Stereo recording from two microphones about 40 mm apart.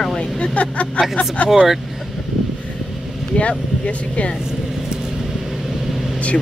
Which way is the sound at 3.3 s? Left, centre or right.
Left.